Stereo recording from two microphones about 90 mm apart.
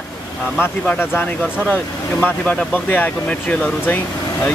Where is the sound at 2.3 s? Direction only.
15° left (ahead or behind).